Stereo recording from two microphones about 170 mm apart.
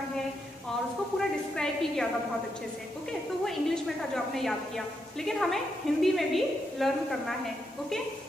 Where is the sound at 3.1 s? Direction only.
5° left (ahead or behind).